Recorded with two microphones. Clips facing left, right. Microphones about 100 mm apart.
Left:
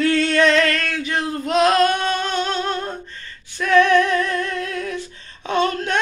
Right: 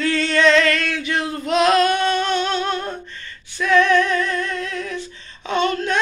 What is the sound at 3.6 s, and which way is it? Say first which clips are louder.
Female singing: left 1 dB; 55° left (ahead or behind).